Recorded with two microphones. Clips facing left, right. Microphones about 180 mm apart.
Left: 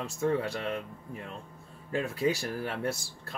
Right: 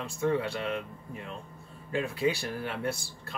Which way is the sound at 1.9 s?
40° left (ahead or behind).